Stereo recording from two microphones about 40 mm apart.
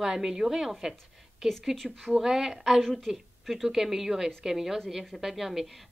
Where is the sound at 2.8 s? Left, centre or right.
Centre.